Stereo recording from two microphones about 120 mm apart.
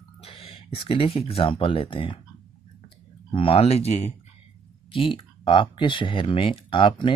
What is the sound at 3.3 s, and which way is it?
Speech, 50° left (ahead or behind).